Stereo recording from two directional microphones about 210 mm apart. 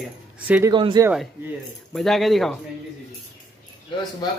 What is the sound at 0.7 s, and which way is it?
Speech, 20° right (ahead or behind).